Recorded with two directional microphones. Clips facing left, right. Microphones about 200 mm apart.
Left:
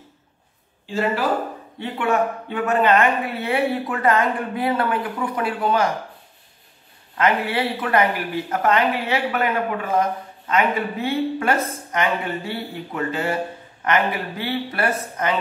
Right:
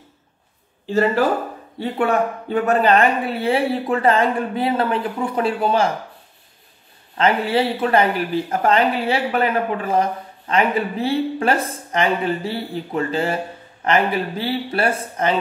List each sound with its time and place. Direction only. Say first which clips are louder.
1.8 s speech: right 2 dB; 35° right (ahead or behind)
7.2 s speech: right 3 dB; 30° right (ahead or behind)